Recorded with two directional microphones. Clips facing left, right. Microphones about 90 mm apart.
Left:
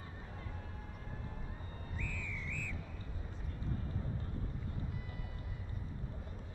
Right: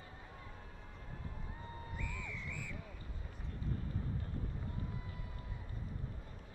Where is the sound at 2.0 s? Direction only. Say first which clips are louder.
Left 4 dB; 20° right (ahead or behind).